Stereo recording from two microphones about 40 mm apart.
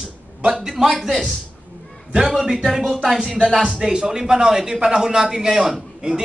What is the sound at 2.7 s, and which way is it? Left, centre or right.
Speech, centre.